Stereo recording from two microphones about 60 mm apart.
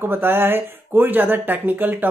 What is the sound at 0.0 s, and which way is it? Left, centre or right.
Speech, right.